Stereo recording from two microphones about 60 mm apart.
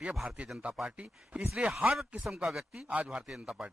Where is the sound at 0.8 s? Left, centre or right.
Right.